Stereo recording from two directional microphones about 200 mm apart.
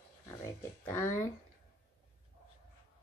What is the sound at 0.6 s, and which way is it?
Speech, 15° left (ahead or behind).